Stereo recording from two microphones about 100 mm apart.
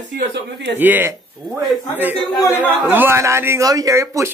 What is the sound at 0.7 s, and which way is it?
Speech, 20° right (ahead or behind).